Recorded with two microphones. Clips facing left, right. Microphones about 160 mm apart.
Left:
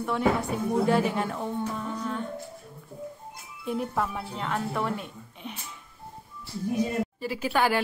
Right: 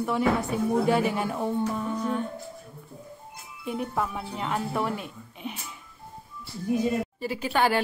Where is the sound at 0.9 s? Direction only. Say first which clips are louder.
Even; 5° right (ahead or behind).